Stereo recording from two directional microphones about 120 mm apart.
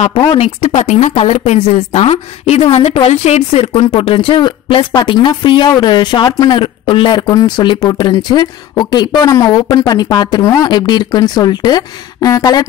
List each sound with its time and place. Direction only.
0.4 s a woman's voice: 60° left (ahead or behind); by 12.6 s 30° left (ahead or behind)